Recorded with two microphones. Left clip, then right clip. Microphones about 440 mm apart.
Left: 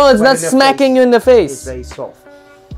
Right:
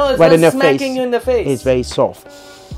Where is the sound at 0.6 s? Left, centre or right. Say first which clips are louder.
Left 5 dB; left.